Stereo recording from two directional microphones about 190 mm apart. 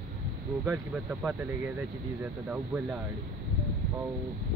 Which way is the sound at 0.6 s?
10° right (ahead or behind).